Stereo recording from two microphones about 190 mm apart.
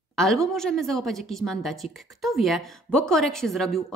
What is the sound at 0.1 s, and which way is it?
A woman's voice, centre (ahead or behind).